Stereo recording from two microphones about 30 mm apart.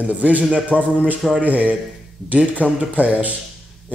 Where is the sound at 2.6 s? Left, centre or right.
Right.